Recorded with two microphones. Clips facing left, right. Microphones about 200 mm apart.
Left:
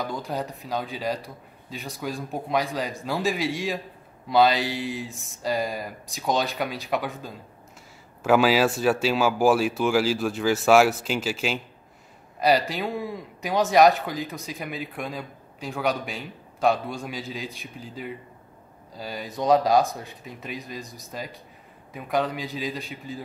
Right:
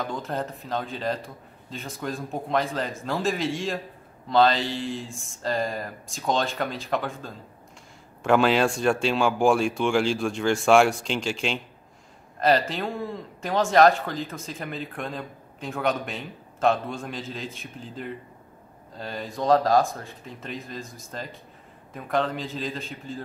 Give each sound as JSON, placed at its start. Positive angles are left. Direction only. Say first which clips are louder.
{"t": 0.0, "sound": "a man's voice", "louder": "even", "side_deg": 0}
{"t": 14.4, "sound": "a man's voice", "louder": "even", "side_deg": 0}
{"t": 19.6, "sound": "speech", "louder": "left 1 dB", "side_deg": 15}
{"t": 20.2, "sound": "a man's voice", "louder": "even", "side_deg": 0}
{"t": 20.8, "sound": "a man's voice", "louder": "left 1 dB", "side_deg": 15}